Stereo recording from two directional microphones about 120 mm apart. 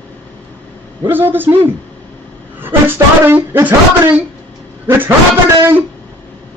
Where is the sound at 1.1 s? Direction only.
15° right (ahead or behind).